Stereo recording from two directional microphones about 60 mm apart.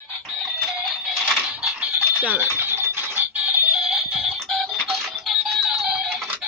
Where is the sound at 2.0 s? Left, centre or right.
Right.